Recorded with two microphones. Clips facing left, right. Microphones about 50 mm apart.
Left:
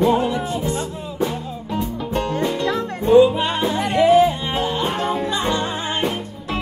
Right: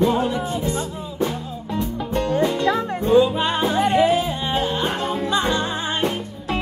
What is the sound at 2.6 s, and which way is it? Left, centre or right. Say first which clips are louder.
Music: right 1 dB; right.